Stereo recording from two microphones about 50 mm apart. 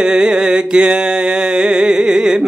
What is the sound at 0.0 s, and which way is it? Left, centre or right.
Music, centre.